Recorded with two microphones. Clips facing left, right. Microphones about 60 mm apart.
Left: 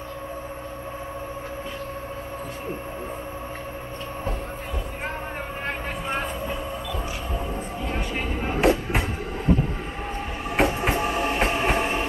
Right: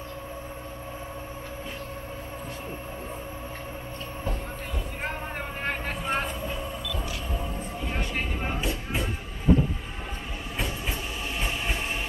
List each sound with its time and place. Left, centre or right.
6.4 s train: centre
7.8 s vehicle: centre
8.5 s music: left
10.5 s train: left
11.6 s train: left